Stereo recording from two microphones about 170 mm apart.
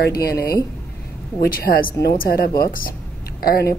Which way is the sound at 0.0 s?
65° left (ahead or behind).